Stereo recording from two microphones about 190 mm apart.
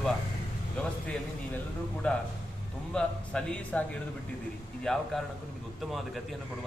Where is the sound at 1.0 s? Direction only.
5° left (ahead or behind).